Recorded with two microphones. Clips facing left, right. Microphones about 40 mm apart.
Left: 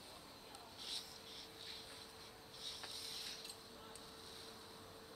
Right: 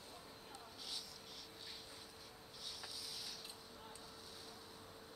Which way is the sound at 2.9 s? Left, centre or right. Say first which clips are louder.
Even; centre.